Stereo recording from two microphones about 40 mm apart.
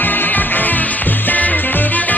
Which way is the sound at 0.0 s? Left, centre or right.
Left.